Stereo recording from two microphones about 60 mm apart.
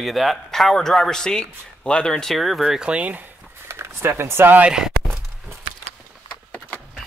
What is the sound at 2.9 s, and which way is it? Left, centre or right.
Speech, right.